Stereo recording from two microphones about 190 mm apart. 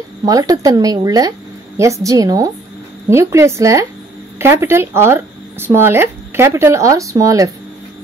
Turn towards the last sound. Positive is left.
turn(degrees=-15)  # may be behind; listen again after turning